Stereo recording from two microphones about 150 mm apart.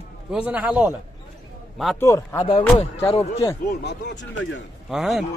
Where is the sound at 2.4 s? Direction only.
40° left (ahead or behind).